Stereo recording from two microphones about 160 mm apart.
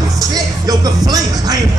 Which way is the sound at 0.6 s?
20° right (ahead or behind).